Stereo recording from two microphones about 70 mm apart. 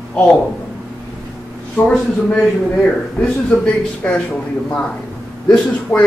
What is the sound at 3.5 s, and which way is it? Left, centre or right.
Speech, centre.